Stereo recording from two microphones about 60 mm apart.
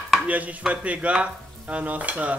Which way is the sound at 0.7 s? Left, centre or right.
Right.